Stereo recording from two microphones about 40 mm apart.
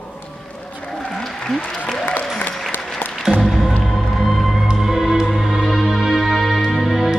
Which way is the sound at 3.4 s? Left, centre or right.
Centre.